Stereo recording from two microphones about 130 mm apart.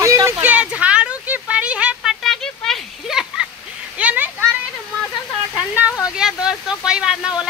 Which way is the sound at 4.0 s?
15° right (ahead or behind).